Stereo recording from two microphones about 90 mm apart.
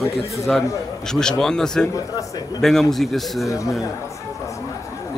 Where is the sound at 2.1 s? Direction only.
45° left (ahead or behind).